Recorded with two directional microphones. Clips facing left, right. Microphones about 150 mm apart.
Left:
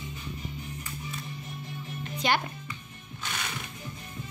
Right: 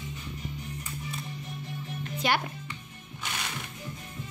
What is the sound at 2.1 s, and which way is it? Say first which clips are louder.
Speech: left 1 dB; 5° right (ahead or behind).